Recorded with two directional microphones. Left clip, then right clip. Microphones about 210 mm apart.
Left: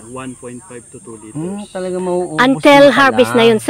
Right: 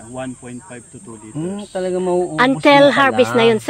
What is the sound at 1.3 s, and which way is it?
Speech, 30° left (ahead or behind).